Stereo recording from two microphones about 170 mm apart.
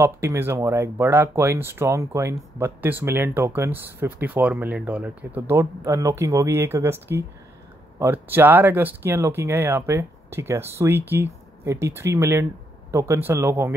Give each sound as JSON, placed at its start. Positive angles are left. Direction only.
{"t": 0.0, "sound": "speech", "side_deg": -15}